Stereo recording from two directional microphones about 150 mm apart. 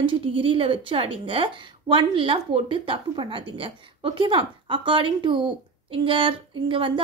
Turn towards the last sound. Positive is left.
turn(degrees=-35)  # may be behind; listen again after turning